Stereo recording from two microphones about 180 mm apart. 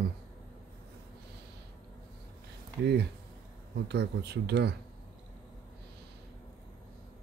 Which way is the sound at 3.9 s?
70° right (ahead or behind).